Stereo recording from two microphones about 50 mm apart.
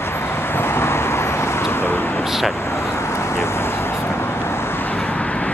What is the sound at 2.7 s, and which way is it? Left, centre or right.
Vehicle, left.